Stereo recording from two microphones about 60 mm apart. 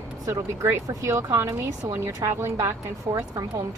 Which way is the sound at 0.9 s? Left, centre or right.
Right.